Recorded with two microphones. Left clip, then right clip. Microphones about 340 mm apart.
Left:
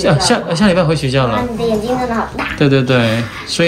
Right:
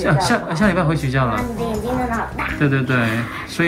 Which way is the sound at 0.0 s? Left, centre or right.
Centre.